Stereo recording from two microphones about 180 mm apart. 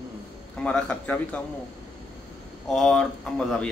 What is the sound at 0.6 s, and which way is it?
Speech, 5° left (ahead or behind).